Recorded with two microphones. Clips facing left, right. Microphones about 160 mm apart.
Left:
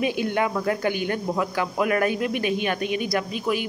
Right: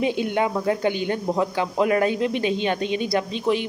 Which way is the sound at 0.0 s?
20° right (ahead or behind).